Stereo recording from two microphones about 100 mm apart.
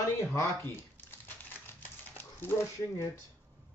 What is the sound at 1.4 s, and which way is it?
Typewriter, 20° left (ahead or behind).